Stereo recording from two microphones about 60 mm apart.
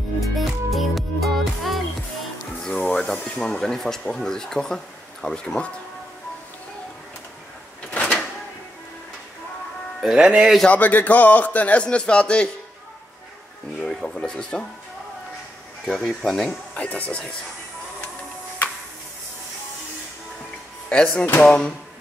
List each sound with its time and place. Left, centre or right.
0.7 s music: centre
2.6 s music: centre
3.0 s speech: centre
7.9 s a sound: centre
10.0 s speech: centre
10.7 s speech: left
13.7 s speech: centre
15.8 s speech: centre
16.7 s speech: left
20.9 s speech: centre